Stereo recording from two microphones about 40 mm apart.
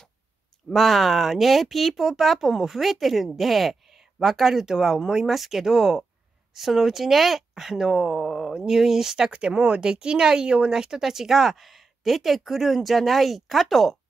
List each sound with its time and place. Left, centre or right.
0.7 s speech: centre
9.5 s speech: right; by 13.9 s centre